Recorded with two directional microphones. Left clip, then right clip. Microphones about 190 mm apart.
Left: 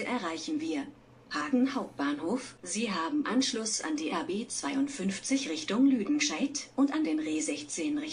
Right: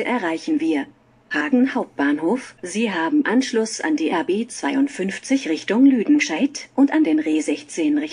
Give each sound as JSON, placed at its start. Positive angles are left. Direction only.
{"t": 0.0, "sound": "speech", "side_deg": -45}